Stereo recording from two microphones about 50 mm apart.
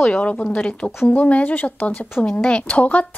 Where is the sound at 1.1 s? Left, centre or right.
Left.